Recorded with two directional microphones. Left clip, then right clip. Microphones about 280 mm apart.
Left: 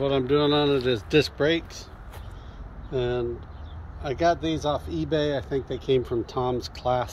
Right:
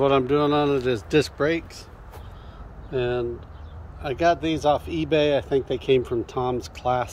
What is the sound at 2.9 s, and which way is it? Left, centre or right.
Speech, centre.